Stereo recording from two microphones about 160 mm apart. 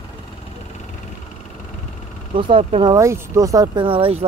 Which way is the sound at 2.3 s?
30° right (ahead or behind).